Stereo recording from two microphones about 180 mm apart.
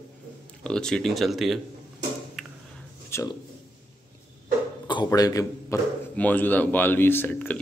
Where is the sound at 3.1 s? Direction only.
15° left (ahead or behind).